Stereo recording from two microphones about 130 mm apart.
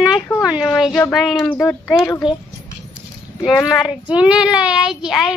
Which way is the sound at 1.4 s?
10° left (ahead or behind).